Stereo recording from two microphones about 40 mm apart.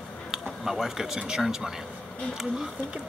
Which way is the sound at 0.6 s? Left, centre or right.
Centre.